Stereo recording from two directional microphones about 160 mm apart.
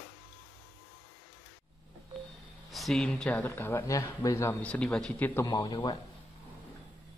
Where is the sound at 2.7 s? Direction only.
Centre (ahead or behind).